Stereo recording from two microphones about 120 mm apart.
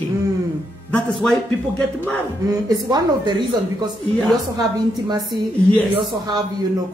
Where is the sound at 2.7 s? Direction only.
35° right (ahead or behind).